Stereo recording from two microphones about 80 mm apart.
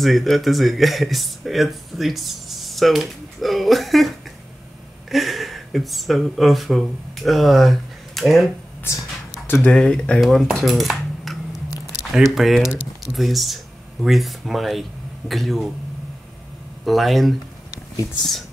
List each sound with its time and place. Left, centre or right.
0.0 s speech: centre
5.1 s speech: centre
9.7 s speech: centre
10.2 s speech: centre
10.5 s cutlery: centre
12.0 s speech: centre
16.8 s speech: centre